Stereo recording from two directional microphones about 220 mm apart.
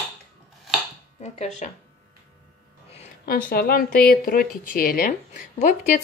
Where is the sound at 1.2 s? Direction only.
30° left (ahead or behind).